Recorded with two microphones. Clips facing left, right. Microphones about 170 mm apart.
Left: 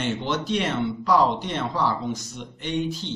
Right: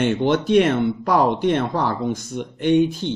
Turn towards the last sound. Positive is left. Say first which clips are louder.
# right 10 dB
turn(degrees=-55)  # may be behind; listen again after turning